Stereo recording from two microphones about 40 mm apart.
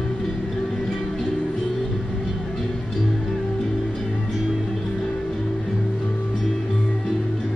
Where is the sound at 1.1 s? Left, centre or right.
Centre.